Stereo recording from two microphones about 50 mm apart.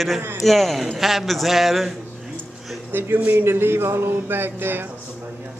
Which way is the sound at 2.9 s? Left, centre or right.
Right.